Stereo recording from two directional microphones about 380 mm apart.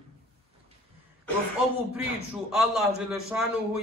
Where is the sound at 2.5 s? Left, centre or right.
Centre.